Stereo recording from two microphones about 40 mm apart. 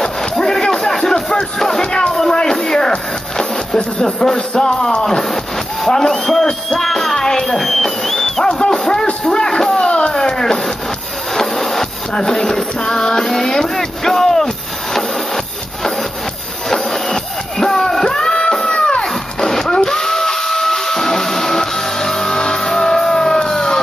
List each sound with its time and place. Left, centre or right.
0.0 s a sound: centre
2.4 s music: centre
6.4 s speech: centre
7.5 s a sound: centre
8.5 s music: centre
9.2 s speech: centre
9.8 s a sound: left
11.3 s wood: centre
12.1 s music: centre
15.0 s wood: centre
16.6 s music: centre
19.5 s steam whistle: centre